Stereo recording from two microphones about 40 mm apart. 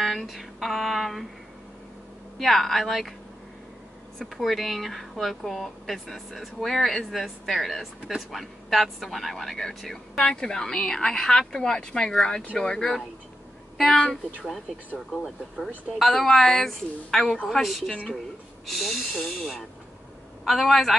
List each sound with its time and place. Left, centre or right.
0.0 s speech: centre
2.3 s speech: centre
4.2 s speech: centre; by 12.8 s left
15.2 s speech: centre